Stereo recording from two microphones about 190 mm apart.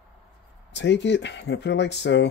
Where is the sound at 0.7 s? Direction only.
65° left (ahead or behind).